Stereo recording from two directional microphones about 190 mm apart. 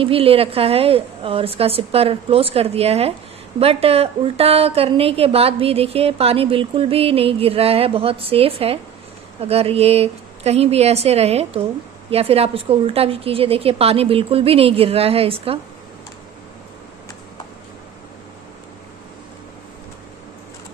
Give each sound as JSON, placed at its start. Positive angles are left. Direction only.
{"t": 0.0, "sound": "a woman's voice", "side_deg": -30}